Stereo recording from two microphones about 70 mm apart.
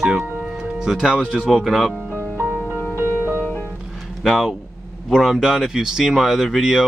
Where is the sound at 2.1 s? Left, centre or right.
Right.